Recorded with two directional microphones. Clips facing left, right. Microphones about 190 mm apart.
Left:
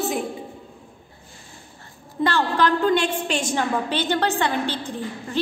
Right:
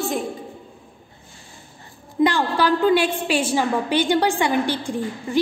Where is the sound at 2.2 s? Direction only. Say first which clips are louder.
Right 2 dB; 10° right (ahead or behind).